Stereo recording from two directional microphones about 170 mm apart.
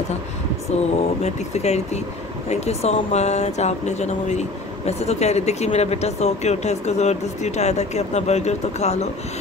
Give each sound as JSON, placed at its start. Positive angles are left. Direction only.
{"t": 0.9, "sound": "speech", "side_deg": 40}